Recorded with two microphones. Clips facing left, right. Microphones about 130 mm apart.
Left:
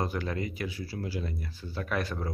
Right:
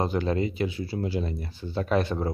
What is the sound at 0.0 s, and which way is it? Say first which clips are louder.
Speech: right 6 dB; 25° right (ahead or behind).